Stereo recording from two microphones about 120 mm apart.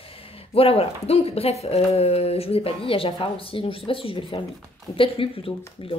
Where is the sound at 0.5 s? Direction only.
55° left (ahead or behind).